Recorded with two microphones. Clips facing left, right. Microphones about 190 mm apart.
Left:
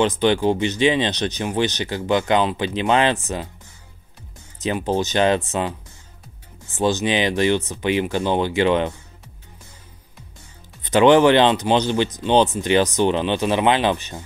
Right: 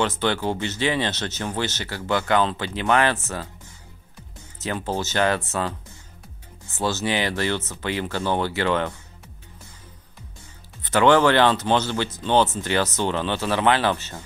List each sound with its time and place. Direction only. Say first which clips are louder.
0.0 s speech: left 6 dB; 15° left (ahead or behind)
4.6 s speech: left 5 dB; 15° left (ahead or behind)
10.8 s speech: left 4 dB; 15° left (ahead or behind)